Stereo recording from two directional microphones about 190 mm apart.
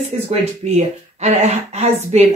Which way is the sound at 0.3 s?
35° right (ahead or behind).